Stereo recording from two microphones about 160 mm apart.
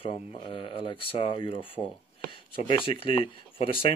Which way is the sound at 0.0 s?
35° left (ahead or behind).